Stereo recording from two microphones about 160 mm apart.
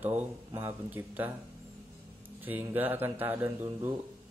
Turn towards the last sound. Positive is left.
turn(degrees=-10)  # may be behind; listen again after turning